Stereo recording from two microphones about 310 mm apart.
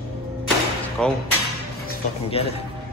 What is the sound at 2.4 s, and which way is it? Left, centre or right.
Speech, centre.